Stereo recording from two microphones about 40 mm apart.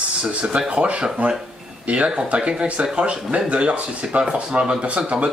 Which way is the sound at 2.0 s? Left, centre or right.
Right.